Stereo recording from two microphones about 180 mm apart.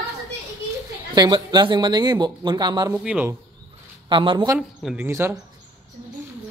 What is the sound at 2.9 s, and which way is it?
Speech, 10° right (ahead or behind).